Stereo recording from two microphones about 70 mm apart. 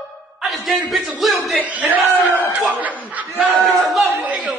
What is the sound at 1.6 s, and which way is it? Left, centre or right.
Speech, right.